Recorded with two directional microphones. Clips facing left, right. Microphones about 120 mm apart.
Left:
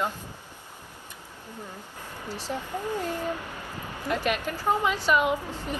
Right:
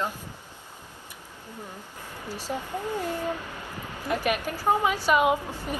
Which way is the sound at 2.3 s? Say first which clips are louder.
Right 1 dB; 15° right (ahead or behind).